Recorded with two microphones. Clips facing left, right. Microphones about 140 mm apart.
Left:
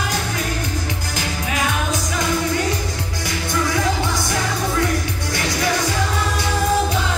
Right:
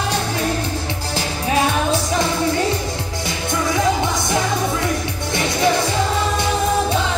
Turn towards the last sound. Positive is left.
turn(degrees=-25)  # may be behind; listen again after turning